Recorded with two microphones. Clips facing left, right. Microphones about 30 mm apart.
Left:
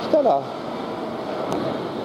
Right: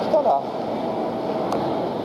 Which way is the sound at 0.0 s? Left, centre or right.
Left.